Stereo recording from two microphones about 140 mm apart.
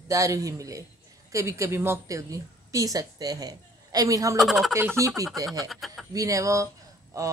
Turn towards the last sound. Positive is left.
turn(degrees=-25)  # may be behind; listen again after turning